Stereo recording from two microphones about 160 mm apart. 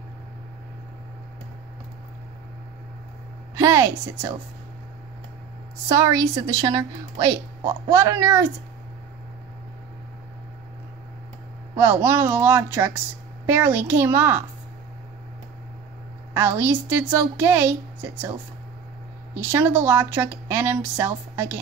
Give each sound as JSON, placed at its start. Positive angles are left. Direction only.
{"t": 3.5, "sound": "a woman's voice", "side_deg": -20}
{"t": 5.9, "sound": "a woman's voice", "side_deg": -20}
{"t": 11.7, "sound": "a woman's voice", "side_deg": -15}
{"t": 16.3, "sound": "a woman's voice", "side_deg": -15}
{"t": 19.3, "sound": "a woman's voice", "side_deg": -15}